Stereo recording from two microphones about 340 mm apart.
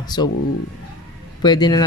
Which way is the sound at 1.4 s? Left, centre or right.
Centre.